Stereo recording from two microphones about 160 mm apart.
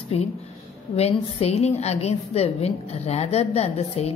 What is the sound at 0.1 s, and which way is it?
A woman's voice, 40° left (ahead or behind).